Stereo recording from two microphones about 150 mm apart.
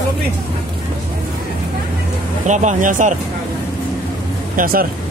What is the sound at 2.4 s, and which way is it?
Speech, 55° right (ahead or behind).